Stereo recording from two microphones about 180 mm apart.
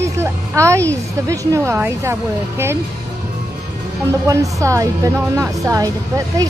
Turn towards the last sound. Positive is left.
turn(degrees=-20)  # may be behind; listen again after turning